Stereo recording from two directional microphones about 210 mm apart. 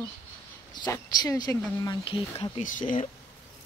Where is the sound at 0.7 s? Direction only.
20° left (ahead or behind); by 3.1 s 40° left (ahead or behind).